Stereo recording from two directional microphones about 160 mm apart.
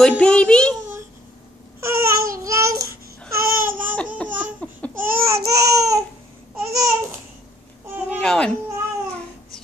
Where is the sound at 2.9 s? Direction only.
70° right (ahead or behind).